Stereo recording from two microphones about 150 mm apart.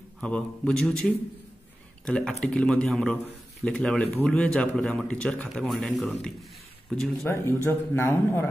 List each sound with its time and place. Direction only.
0.2 s a man's voice: 5° left (ahead or behind)
7.2 s speech: 15° left (ahead or behind)